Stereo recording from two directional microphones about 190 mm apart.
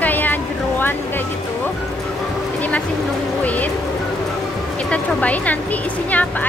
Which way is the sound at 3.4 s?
10° left (ahead or behind).